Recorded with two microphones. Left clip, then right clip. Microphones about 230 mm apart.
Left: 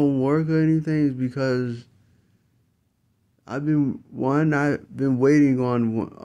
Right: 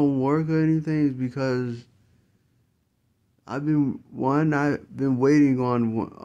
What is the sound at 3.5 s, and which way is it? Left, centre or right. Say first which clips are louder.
Speech: left 1 dB; centre.